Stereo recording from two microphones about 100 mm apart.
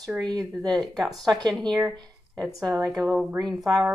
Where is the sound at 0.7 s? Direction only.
5° left (ahead or behind).